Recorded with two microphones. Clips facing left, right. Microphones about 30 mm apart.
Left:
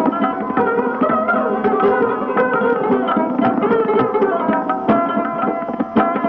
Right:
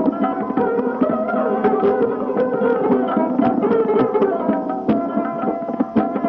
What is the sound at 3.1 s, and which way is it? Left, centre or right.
Music, left.